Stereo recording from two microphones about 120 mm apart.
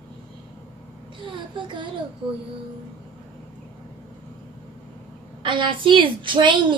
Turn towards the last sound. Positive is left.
turn(degrees=-40)  # may be behind; listen again after turning